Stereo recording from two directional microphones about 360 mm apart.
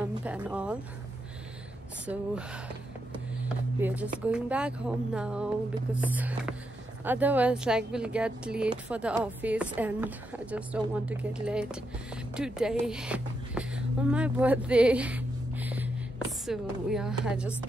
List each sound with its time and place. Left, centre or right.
0.1 s speech: centre
2.0 s speech: centre
3.4 s music: centre
4.3 s speech: centre